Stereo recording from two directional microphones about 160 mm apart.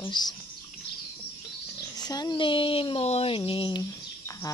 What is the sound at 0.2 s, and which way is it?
Speech, 25° left (ahead or behind).